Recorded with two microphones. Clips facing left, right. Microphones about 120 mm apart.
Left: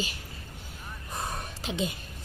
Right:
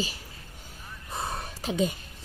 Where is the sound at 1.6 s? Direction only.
40° right (ahead or behind).